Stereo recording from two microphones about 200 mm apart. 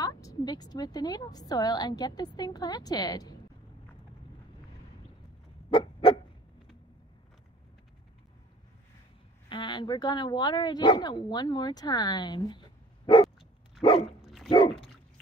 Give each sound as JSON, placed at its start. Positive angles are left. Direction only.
{"t": 0.0, "sound": "speech", "side_deg": 15}
{"t": 5.7, "sound": "a sound", "side_deg": 25}
{"t": 9.5, "sound": "speech", "side_deg": 25}
{"t": 13.7, "sound": "dog", "side_deg": 25}
{"t": 14.2, "sound": "dog", "side_deg": 0}
{"t": 14.5, "sound": "speech", "side_deg": 25}